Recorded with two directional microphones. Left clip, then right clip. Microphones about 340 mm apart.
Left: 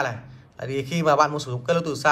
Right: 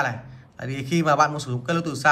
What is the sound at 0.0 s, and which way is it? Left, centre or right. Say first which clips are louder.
A man's voice: right 1 dB; centre.